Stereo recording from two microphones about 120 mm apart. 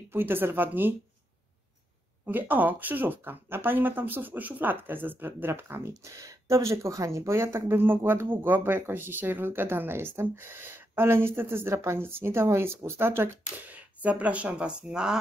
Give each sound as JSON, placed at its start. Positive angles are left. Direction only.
{"t": 0.1, "sound": "speech", "side_deg": -15}
{"t": 2.2, "sound": "a woman's voice", "side_deg": -15}